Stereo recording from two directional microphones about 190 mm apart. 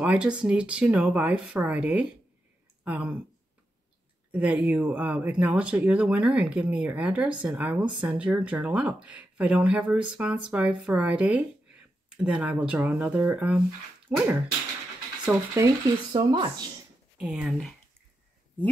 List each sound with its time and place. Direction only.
0.0 s speech: 5° right (ahead or behind)
4.3 s speech: 5° right (ahead or behind)
15.6 s speech: 20° right (ahead or behind)
17.2 s speech: 5° right (ahead or behind)